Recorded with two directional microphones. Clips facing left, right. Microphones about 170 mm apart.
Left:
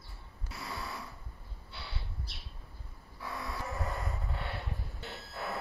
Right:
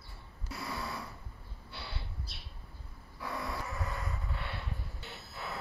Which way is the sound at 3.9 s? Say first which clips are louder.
Left 2 dB; centre (ahead or behind).